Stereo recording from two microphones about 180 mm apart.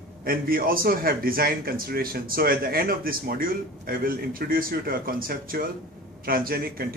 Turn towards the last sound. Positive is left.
turn(degrees=-55)  # may be behind; listen again after turning